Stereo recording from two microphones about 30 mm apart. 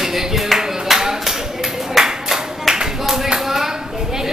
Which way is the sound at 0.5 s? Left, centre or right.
Centre.